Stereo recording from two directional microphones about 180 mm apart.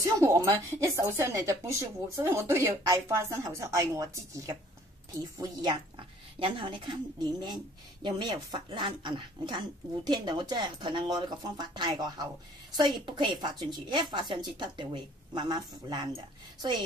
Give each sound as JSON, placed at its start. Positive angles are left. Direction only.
{"t": 0.0, "sound": "speech", "side_deg": -20}